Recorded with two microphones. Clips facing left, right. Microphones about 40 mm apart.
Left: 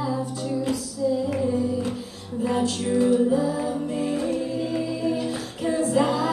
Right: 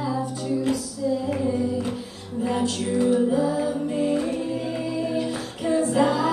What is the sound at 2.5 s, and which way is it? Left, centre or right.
Music, centre.